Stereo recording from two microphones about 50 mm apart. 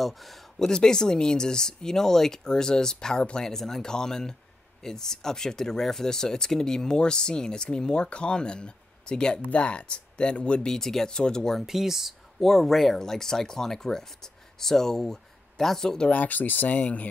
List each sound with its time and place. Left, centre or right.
0.0 s speech: centre
0.7 s speech: centre
10.8 s speech: centre
11.6 s speech: centre
12.4 s speech: centre
16.1 s speech: left